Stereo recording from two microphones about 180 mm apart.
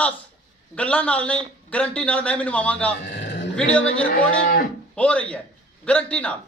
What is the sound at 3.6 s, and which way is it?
Speech, 5° left (ahead or behind).